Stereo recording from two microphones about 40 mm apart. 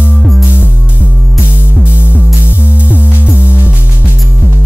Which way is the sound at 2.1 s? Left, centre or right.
Right.